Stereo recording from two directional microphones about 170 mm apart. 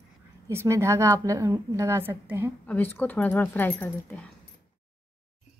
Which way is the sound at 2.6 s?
10° left (ahead or behind).